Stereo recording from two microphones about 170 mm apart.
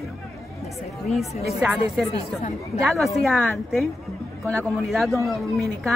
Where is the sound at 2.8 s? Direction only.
Centre (ahead or behind).